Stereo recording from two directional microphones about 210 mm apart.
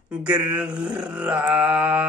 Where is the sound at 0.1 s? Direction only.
5° right (ahead or behind).